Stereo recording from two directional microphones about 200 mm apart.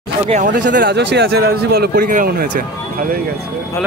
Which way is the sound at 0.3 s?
40° right (ahead or behind).